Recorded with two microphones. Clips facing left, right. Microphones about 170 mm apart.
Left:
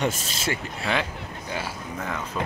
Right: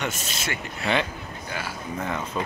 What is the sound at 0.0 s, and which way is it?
Speech, 35° left (ahead or behind).